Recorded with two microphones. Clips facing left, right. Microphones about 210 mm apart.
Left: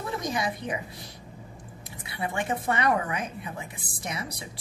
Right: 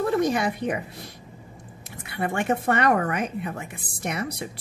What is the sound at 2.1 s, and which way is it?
Speech, 55° right (ahead or behind).